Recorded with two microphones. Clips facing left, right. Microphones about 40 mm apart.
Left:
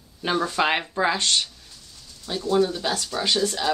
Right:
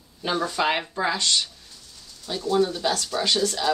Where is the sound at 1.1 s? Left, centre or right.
Left.